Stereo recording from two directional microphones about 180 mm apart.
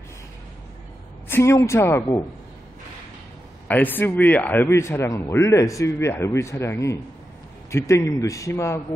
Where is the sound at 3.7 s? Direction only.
10° left (ahead or behind).